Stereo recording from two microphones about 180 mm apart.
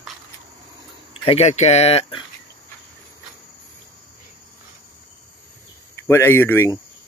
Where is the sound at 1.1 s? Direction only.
35° left (ahead or behind).